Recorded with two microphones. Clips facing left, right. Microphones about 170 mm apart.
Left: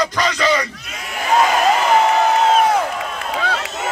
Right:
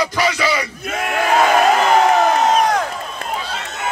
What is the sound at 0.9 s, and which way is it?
Crowd, 60° right (ahead or behind).